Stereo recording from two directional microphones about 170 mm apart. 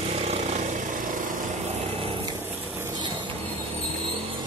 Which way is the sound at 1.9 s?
30° right (ahead or behind).